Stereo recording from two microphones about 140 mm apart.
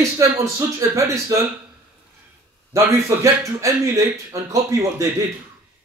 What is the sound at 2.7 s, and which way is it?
Speech, 20° right (ahead or behind).